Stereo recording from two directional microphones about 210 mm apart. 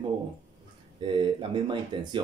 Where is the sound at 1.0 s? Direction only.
20° right (ahead or behind).